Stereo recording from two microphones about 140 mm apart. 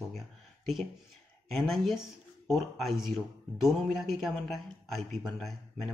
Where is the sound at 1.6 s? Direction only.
Centre (ahead or behind).